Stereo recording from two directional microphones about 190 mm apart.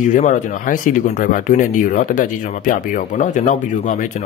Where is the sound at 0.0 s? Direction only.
40° left (ahead or behind).